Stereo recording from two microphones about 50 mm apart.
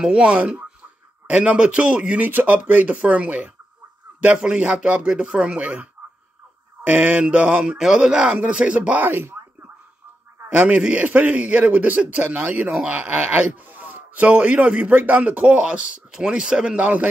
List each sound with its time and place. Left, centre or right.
0.0 s a man's voice: centre
2.2 s a man's voice: right
10.5 s a man's voice: right
16.7 s a man's voice: right